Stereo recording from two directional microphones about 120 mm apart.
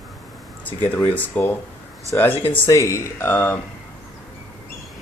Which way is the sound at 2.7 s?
25° left (ahead or behind).